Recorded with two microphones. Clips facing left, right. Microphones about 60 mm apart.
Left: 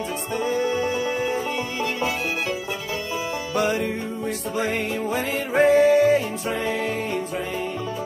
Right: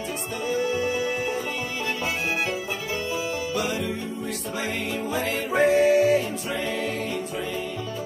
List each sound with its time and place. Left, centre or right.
0.6 s music: left
5.1 s music: left